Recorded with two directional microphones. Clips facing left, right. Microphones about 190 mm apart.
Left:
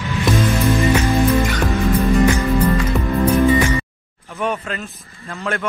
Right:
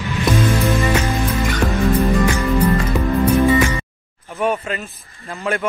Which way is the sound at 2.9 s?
Centre (ahead or behind).